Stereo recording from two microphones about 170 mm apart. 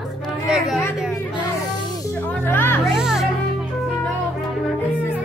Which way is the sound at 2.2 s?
10° left (ahead or behind).